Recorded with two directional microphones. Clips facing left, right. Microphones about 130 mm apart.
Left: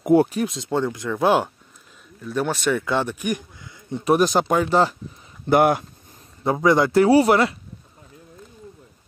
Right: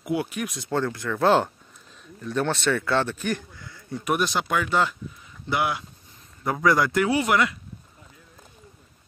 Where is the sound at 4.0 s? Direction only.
35° left (ahead or behind).